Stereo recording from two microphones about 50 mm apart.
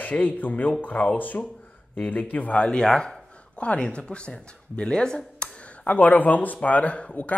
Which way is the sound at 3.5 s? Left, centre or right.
Left.